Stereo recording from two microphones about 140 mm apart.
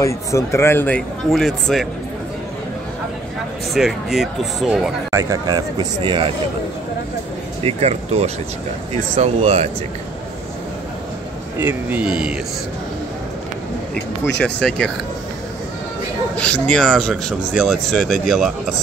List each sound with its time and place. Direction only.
0.0 s speech: 20° left (ahead or behind); by 1.9 s centre (ahead or behind)
3.7 s speech: centre (ahead or behind)
5.1 s speech: 25° right (ahead or behind)
7.6 s speech: 50° right (ahead or behind)
11.6 s a man's voice: 10° right (ahead or behind)
13.9 s speech: 5° left (ahead or behind)
16.3 s speech: 10° left (ahead or behind)